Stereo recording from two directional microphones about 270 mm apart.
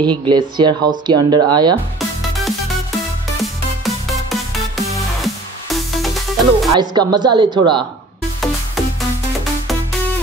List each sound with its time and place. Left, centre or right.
0.0 s speech: centre
2.0 s music: centre
3.8 s music: centre
6.8 s speech: centre